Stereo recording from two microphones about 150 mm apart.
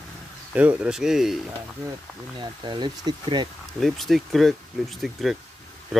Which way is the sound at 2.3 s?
30° right (ahead or behind).